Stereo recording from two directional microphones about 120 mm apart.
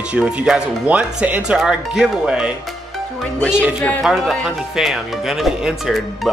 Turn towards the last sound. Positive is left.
turn(degrees=0)  # may be behind; listen again after turning